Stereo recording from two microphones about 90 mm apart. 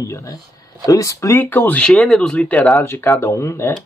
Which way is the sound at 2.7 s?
25° left (ahead or behind).